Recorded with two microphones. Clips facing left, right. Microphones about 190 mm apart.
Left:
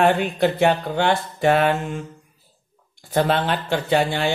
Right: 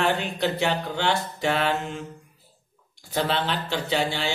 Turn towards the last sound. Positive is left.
turn(degrees=55)  # may be behind; listen again after turning